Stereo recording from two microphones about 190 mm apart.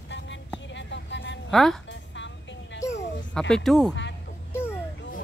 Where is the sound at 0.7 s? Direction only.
70° left (ahead or behind).